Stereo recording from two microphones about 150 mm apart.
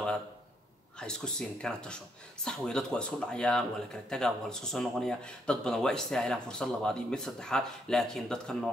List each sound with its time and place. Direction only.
0.9 s speech: 5° left (ahead or behind)